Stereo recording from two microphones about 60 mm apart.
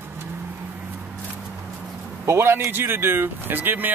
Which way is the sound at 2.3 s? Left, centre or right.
Right.